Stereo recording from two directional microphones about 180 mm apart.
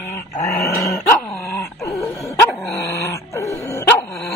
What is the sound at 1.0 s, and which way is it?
Dog, 15° left (ahead or behind).